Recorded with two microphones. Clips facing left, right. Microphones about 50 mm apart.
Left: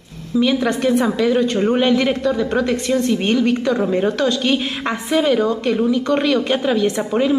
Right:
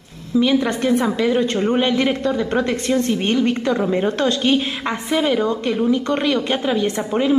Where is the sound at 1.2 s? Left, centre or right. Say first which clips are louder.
Left 3 dB; centre.